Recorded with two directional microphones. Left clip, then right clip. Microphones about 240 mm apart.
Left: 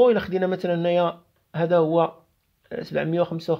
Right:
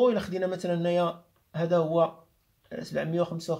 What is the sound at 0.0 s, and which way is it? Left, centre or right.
Speech, left.